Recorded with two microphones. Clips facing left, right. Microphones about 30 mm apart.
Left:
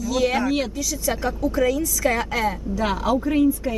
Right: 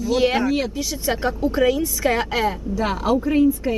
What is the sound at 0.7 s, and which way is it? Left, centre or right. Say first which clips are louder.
Speech: right 1 dB; right.